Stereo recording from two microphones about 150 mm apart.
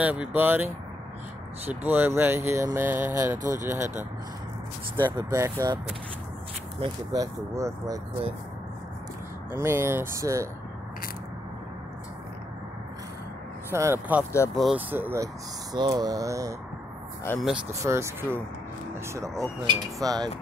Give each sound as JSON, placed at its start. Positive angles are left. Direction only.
{"t": 0.0, "sound": "speech", "side_deg": -10}
{"t": 1.7, "sound": "speech", "side_deg": -10}
{"t": 4.9, "sound": "speech", "side_deg": -30}
{"t": 6.8, "sound": "speech", "side_deg": -25}
{"t": 9.5, "sound": "speech", "side_deg": -15}
{"t": 13.7, "sound": "speech", "side_deg": -15}
{"t": 14.5, "sound": "speech", "side_deg": 0}
{"t": 14.9, "sound": "speech", "side_deg": -15}
{"t": 15.7, "sound": "speech", "side_deg": -25}
{"t": 17.3, "sound": "speech", "side_deg": 15}
{"t": 17.6, "sound": "speech", "side_deg": -20}